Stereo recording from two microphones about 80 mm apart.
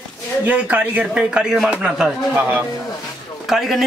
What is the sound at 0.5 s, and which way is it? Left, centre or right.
A man's voice, right.